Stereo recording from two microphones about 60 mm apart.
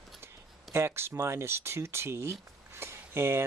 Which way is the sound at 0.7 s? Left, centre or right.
Right.